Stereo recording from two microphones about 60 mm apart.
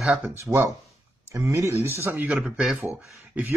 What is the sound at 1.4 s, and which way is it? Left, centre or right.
Speech, right.